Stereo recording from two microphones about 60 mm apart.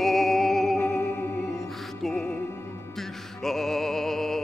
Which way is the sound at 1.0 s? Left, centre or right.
Left.